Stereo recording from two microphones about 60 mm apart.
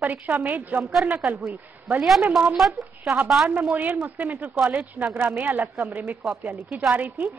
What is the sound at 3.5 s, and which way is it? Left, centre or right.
A woman's voice, right.